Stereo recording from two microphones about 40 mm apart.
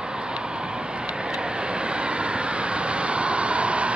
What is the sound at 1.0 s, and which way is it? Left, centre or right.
Vehicle, right.